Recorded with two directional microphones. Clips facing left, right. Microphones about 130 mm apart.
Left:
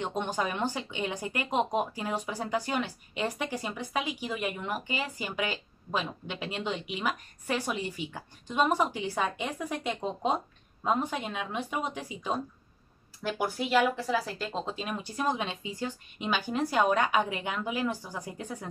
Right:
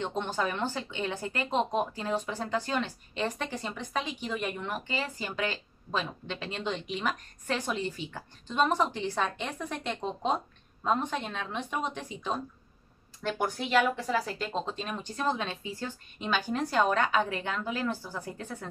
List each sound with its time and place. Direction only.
0.0 s speech: 15° left (ahead or behind)